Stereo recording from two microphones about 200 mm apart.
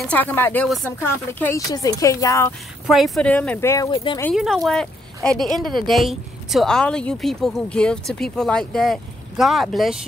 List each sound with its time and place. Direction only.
0.1 s speech: 10° left (ahead or behind)
2.9 s speech: 5° left (ahead or behind)
3.9 s speech: 25° left (ahead or behind)
4.6 s speech: 5° left (ahead or behind)